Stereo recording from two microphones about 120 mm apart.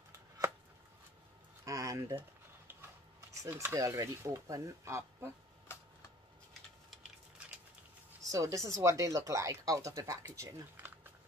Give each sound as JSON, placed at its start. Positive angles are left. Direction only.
{"t": 1.6, "sound": "a sound", "side_deg": -30}
{"t": 2.7, "sound": "speech", "side_deg": -20}
{"t": 8.2, "sound": "speech", "side_deg": -30}